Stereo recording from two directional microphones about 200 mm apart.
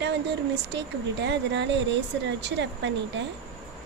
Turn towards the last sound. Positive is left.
turn(degrees=-65)  # may be behind; listen again after turning